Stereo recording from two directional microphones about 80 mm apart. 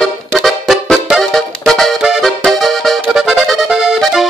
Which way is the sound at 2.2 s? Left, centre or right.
Centre.